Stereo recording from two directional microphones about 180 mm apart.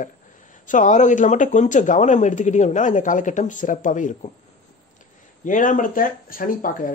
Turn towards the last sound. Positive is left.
turn(degrees=50)  # may be behind; listen again after turning